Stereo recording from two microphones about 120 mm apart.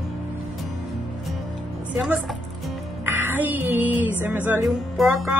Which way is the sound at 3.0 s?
15° right (ahead or behind).